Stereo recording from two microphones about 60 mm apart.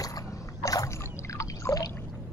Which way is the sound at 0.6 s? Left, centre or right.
Left.